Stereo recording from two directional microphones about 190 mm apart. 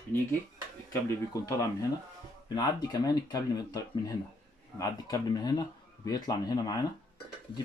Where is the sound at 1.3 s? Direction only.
15° left (ahead or behind).